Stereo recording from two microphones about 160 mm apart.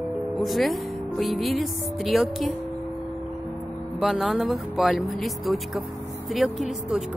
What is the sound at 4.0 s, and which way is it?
Speech, centre (ahead or behind).